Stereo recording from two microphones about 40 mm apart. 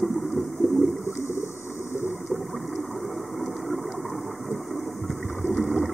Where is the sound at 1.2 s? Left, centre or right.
Left.